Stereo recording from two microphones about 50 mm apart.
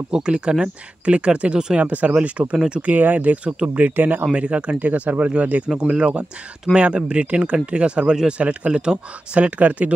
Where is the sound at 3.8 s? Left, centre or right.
Right.